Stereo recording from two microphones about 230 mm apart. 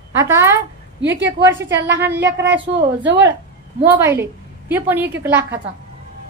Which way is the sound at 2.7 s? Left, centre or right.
Right.